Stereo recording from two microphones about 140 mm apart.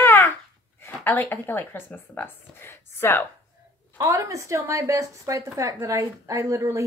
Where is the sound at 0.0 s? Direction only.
15° left (ahead or behind).